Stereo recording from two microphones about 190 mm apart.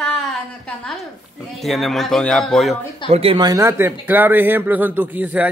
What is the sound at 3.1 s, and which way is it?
A man's voice, 30° right (ahead or behind).